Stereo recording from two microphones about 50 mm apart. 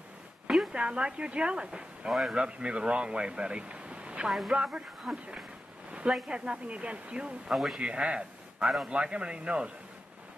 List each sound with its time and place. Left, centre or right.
0.7 s speech: centre
4.3 s a man's voice: centre; by 7.5 s right
7.5 s a man's voice: centre
7.8 s a man's voice: centre
8.6 s a man's voice: centre
9.0 s speech: right